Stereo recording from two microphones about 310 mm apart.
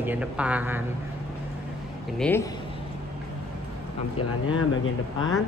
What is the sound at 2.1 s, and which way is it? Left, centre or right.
Speech, centre.